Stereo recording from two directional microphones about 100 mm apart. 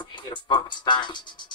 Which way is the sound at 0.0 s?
50° left (ahead or behind).